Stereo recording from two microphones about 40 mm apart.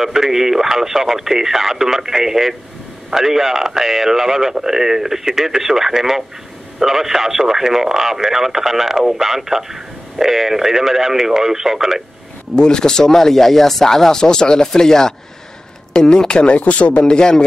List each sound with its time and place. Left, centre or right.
0.0 s speech: centre
12.5 s speech: centre
16.5 s speech: left
17.0 s speech: centre